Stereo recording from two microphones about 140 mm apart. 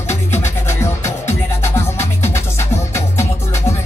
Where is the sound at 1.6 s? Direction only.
15° left (ahead or behind).